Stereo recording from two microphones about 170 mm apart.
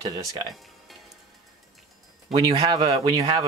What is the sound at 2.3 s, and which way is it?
Speech, 30° right (ahead or behind).